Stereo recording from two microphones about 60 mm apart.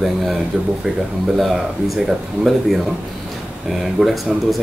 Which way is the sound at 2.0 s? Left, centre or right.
Centre.